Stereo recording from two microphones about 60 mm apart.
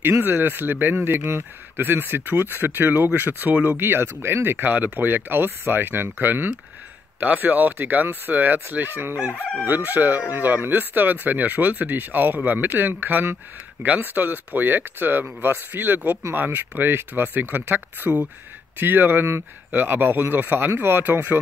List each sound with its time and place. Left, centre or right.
0.2 s speech: right